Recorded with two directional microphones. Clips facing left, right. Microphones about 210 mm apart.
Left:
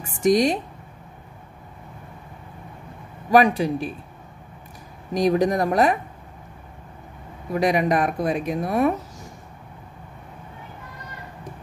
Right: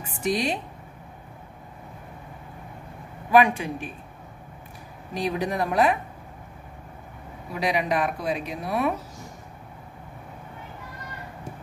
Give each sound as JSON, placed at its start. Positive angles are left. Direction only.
{"t": 0.0, "sound": "speech", "side_deg": 45}
{"t": 3.3, "sound": "speech", "side_deg": 35}
{"t": 5.1, "sound": "speech", "side_deg": 45}
{"t": 7.5, "sound": "speech", "side_deg": 45}